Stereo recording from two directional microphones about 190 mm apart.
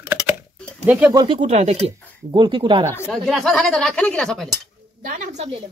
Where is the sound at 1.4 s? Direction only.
35° right (ahead or behind).